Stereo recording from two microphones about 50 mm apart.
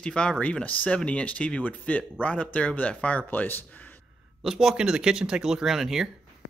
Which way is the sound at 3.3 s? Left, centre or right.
Left.